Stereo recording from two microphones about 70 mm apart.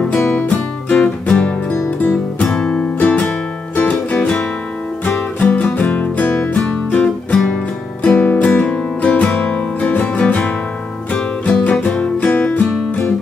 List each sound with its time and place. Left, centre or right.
0.3 s music: left